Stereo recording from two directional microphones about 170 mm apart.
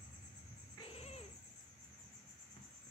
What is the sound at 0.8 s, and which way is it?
Babbling, 35° left (ahead or behind).